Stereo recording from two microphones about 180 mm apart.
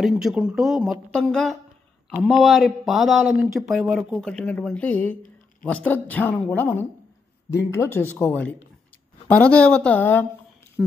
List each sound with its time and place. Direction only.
0.0 s speech: 5° right (ahead or behind)
7.8 s speech: 15° left (ahead or behind)
10.8 s speech: 5° right (ahead or behind)